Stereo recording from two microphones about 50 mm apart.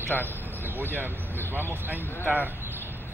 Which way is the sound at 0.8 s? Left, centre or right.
Right.